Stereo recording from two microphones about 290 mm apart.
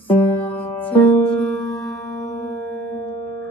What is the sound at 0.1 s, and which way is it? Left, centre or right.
Music, centre.